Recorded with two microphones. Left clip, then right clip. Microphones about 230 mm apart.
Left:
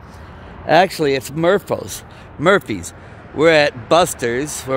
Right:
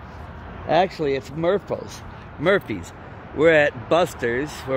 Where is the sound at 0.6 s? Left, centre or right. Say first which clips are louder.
Left 6 dB; left.